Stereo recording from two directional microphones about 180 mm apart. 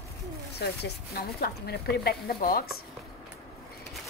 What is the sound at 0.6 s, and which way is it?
A woman's voice, 65° left (ahead or behind).